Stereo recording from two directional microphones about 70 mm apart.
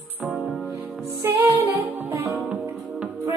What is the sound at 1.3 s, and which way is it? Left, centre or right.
Music, right.